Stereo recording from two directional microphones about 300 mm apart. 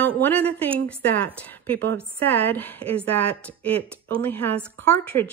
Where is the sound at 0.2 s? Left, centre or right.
Centre.